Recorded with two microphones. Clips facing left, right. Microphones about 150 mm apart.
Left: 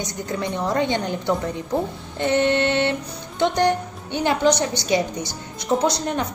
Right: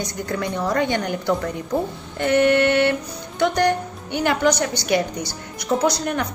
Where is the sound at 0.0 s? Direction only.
20° left (ahead or behind).